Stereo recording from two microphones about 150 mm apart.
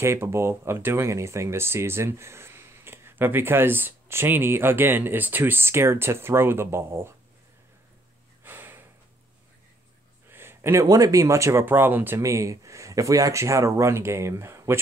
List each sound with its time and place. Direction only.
0.0 s speech: 20° right (ahead or behind)
8.5 s snort: 15° right (ahead or behind)
10.2 s speech: 15° right (ahead or behind)